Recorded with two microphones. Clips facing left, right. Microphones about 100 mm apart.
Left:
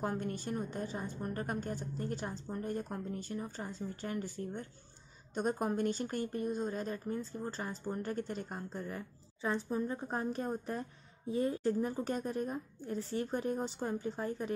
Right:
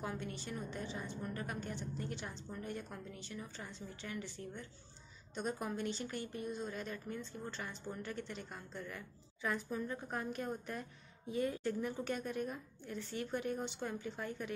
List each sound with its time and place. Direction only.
0.0 s a woman's voice: 45° left (ahead or behind)